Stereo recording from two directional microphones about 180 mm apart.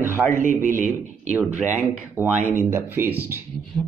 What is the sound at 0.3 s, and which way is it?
Speech, 45° right (ahead or behind).